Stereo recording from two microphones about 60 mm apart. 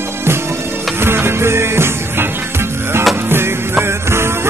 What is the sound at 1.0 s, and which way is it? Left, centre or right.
Music, right.